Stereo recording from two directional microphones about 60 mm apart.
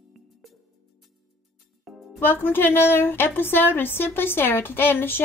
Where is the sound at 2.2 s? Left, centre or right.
Left.